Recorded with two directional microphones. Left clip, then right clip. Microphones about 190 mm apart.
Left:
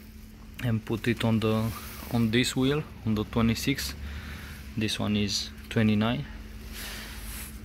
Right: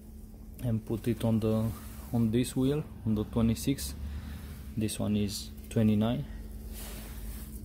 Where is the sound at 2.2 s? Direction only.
Centre (ahead or behind).